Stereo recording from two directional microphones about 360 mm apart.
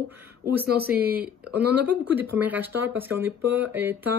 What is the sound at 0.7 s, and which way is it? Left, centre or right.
Speech, right.